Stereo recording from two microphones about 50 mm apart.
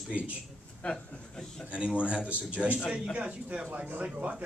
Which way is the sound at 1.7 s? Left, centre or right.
Right.